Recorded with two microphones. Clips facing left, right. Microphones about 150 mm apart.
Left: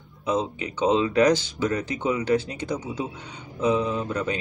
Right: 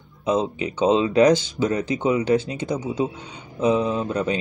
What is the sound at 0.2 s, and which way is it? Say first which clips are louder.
Speech: right 4 dB; 20° right (ahead or behind).